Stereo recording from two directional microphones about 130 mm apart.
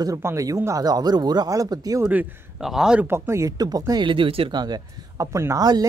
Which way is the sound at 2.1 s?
10° right (ahead or behind).